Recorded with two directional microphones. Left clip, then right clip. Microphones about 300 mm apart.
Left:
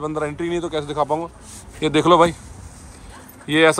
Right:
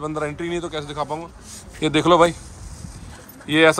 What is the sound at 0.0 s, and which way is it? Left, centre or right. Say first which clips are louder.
Speech: left 2 dB; centre.